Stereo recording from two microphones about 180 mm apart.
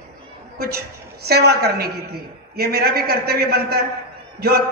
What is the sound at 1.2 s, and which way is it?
A man's voice, 60° right (ahead or behind).